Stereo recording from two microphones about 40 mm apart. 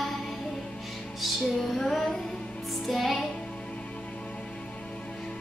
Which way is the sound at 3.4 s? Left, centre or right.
Left.